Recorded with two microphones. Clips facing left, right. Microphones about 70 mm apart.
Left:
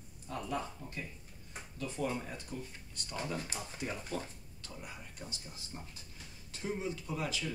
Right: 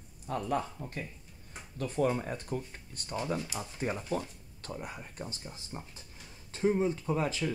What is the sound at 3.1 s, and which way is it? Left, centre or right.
Speech, right.